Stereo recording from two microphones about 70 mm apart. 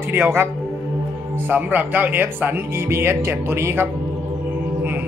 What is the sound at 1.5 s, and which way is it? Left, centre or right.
Speech, right.